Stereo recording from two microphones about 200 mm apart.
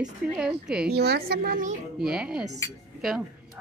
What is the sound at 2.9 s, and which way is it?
Cutlery, centre (ahead or behind).